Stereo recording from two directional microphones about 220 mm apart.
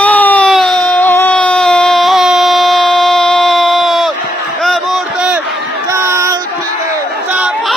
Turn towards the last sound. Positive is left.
turn(degrees=-5)  # may be behind; listen again after turning